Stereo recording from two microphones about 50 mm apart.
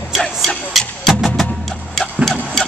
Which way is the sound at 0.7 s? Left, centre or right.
Centre.